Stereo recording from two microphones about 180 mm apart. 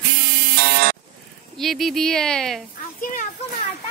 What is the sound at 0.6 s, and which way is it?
Music, 55° right (ahead or behind).